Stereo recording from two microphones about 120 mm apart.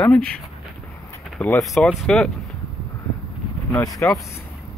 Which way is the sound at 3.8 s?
30° left (ahead or behind).